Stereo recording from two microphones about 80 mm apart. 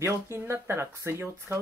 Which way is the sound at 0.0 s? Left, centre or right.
Right.